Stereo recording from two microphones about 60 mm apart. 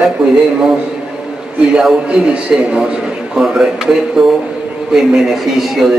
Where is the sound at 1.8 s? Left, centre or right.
Centre.